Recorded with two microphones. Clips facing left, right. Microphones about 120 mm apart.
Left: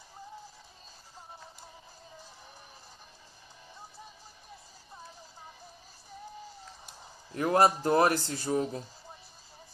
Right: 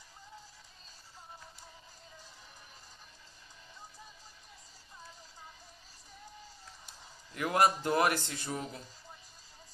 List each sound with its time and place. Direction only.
7.3 s a man's voice: 35° left (ahead or behind)